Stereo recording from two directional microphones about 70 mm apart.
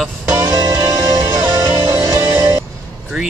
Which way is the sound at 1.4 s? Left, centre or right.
Right.